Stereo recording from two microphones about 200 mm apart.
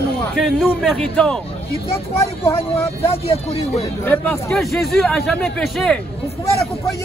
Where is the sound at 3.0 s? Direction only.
30° left (ahead or behind).